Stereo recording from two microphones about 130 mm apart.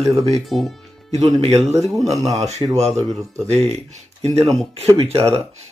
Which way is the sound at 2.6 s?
35° right (ahead or behind).